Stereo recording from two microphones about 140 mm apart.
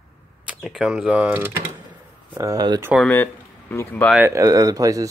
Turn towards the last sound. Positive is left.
turn(degrees=-25)  # may be behind; listen again after turning